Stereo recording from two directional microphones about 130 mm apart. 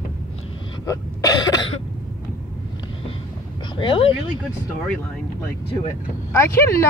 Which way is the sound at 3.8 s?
40° left (ahead or behind).